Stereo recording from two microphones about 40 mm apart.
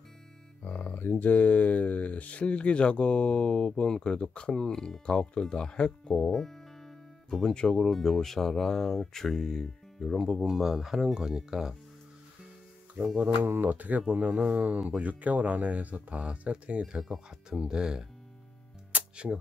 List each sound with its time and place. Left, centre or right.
0.9 s speech: left
6.1 s music: centre
7.9 s speech: centre
10.1 s speech: centre
13.2 s speech: right
13.6 s speech: right
17.1 s speech: centre
18.9 s music: right